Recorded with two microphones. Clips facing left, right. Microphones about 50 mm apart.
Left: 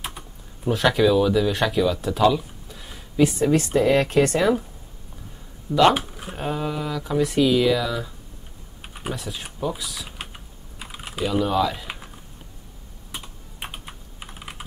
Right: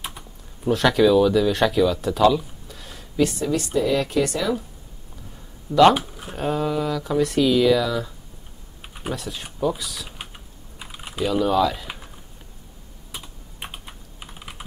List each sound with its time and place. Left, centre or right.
0.7 s speech: centre
3.3 s speech: left
5.7 s speech: centre
10.8 s typing: centre
13.1 s computer keyboard: centre